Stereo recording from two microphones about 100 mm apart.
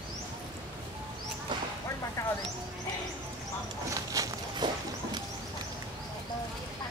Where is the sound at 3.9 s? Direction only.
35° right (ahead or behind).